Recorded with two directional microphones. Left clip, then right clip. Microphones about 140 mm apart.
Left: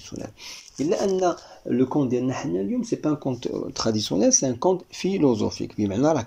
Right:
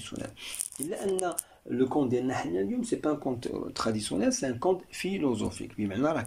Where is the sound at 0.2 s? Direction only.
30° left (ahead or behind).